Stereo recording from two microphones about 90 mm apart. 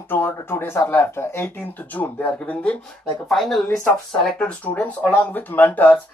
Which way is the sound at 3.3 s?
Centre (ahead or behind).